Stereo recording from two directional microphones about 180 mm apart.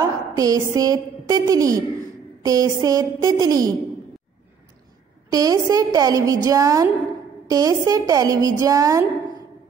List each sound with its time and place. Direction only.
0.0 s a woman's voice: 20° right (ahead or behind)
5.3 s a woman's voice: 20° right (ahead or behind)